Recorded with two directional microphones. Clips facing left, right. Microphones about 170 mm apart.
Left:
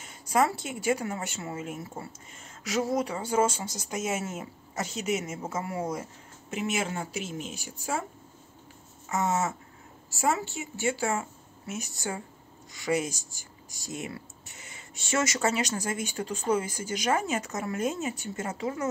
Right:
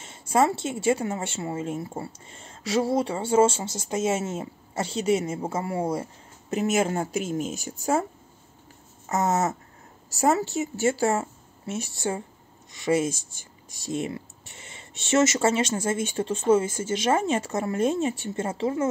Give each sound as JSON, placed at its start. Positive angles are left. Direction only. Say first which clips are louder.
{"t": 0.0, "sound": "speech", "louder": "right 3 dB", "side_deg": -25}
{"t": 6.5, "sound": "a woman's voice", "louder": "right 7 dB", "side_deg": -40}
{"t": 9.1, "sound": "a woman's voice", "louder": "right 4 dB", "side_deg": -40}